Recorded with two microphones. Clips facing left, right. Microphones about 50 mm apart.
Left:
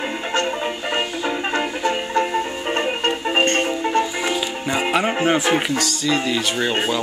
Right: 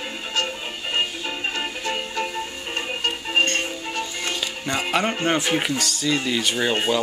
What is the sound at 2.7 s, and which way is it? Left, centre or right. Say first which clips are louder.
Music: left 5 dB; left.